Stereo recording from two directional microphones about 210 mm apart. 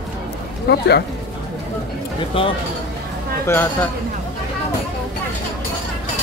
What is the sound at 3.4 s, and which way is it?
Speech, 10° left (ahead or behind).